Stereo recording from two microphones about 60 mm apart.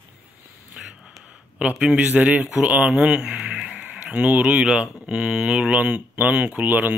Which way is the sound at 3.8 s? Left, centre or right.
Right.